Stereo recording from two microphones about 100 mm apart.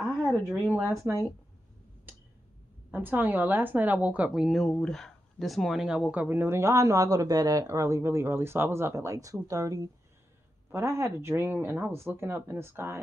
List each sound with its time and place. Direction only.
0.7 s speech: 25° right (ahead or behind)
2.9 s a woman's voice: 20° right (ahead or behind)